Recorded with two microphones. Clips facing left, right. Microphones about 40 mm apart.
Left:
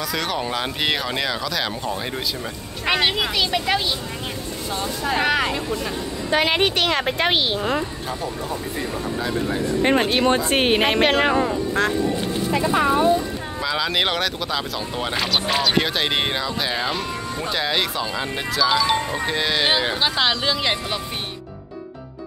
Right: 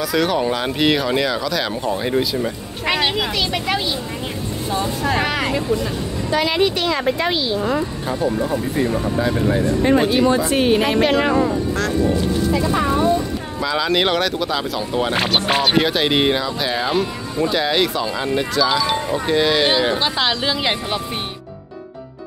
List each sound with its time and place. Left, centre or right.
0.0 s speech: centre
5.0 s speech: centre
6.3 s speech: left
8.4 s speech: centre
9.8 s speech: left
11.3 s speech: left
12.7 s speech: centre
13.6 s speech: centre
15.3 s speech: right
15.7 s speech: centre